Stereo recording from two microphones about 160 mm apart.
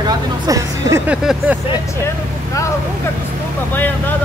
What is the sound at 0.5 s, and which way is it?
Speech, 20° right (ahead or behind).